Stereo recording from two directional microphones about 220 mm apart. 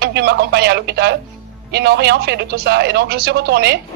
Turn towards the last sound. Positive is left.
turn(degrees=-50)  # may be behind; listen again after turning